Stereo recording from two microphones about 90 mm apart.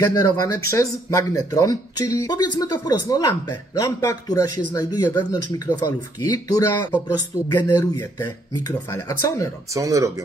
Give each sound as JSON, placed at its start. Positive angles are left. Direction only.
{"t": 0.0, "sound": "speech", "side_deg": 45}
{"t": 8.9, "sound": "speech", "side_deg": 35}
{"t": 9.8, "sound": "speech", "side_deg": -35}